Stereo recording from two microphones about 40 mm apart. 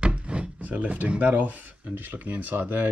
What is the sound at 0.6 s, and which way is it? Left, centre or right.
Speech, right.